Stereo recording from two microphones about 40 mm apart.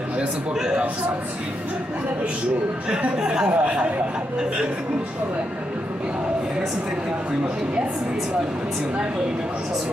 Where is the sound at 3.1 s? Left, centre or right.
Centre.